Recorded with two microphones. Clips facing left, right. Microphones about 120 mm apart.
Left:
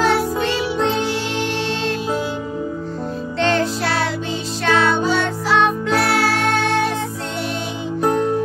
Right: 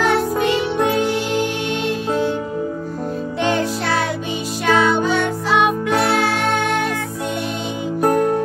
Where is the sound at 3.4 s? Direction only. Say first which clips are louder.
Left 2 dB; 15° right (ahead or behind).